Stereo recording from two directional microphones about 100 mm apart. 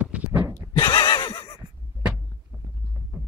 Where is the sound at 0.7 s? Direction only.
50° left (ahead or behind).